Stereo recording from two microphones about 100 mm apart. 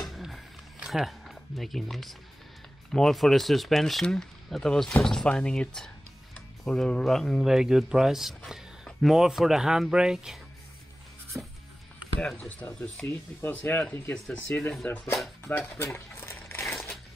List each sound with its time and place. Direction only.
0.0 s music: centre (ahead or behind)
2.9 s speech: 5° left (ahead or behind)
11.3 s music: 20° right (ahead or behind)
12.2 s speech: 5° left (ahead or behind)
14.1 s speech: 10° left (ahead or behind)
15.8 s a sound: 25° left (ahead or behind)